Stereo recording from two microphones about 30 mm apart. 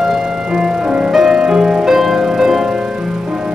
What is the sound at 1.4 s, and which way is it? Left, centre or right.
Music, right.